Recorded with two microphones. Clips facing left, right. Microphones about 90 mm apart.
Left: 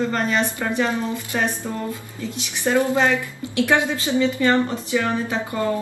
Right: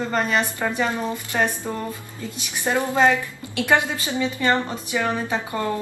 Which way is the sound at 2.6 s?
20° right (ahead or behind).